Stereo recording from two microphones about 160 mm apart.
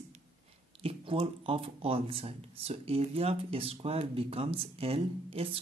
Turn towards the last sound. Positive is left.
turn(degrees=-35)  # may be behind; listen again after turning